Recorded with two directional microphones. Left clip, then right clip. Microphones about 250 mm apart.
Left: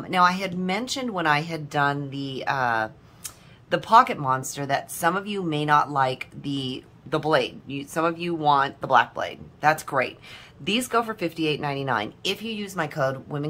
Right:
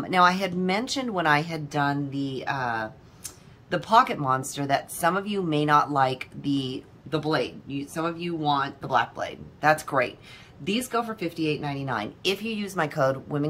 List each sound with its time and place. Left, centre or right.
0.0 s speech: centre